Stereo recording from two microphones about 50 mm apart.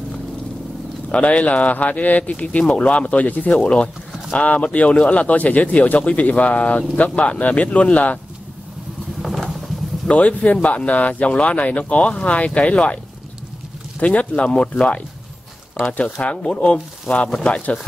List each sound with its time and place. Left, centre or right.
1.1 s speech: left
10.0 s speech: left